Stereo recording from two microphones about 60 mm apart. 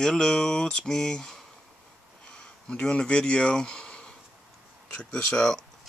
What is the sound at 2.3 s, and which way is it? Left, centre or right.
Speech, centre.